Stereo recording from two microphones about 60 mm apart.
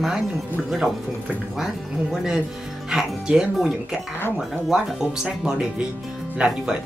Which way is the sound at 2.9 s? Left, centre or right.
Centre.